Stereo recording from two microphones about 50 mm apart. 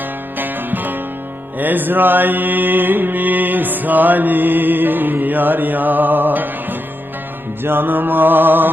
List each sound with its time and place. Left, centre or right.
0.4 s music: right
1.6 s mantra: right
7.6 s music: right